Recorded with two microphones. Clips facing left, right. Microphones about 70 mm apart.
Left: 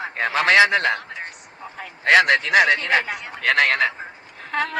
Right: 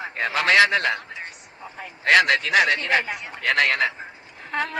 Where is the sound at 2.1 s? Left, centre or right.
Left.